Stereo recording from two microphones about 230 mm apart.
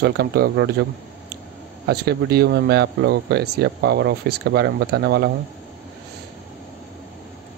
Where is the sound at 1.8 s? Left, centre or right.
Right.